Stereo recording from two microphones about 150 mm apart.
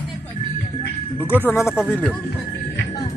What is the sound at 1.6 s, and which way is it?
Speech, 5° right (ahead or behind).